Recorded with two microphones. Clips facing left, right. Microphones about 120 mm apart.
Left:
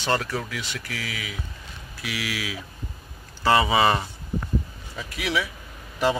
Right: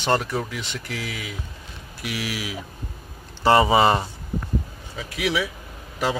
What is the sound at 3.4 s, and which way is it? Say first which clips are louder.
Speech: right 3 dB; 30° right (ahead or behind).